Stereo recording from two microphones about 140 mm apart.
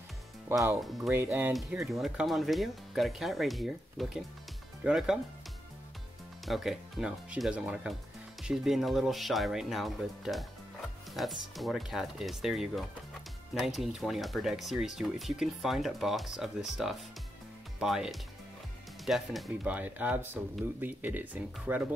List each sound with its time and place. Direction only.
0.7 s speech: centre (ahead or behind)
1.1 s speech: 15° right (ahead or behind)
1.5 s speech: centre (ahead or behind)
6.4 s speech: centre (ahead or behind)
19.7 s speech: 10° right (ahead or behind)